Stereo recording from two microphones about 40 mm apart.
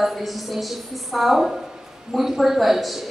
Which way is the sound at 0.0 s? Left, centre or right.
Centre.